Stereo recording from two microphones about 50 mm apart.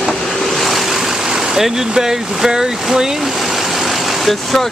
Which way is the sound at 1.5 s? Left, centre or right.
Centre.